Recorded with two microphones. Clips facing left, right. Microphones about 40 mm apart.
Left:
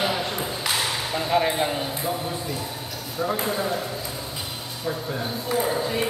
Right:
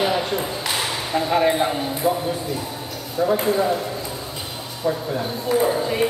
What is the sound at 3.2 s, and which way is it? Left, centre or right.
Speech, centre.